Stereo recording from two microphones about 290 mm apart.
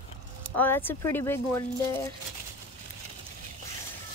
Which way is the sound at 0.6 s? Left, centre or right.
Centre.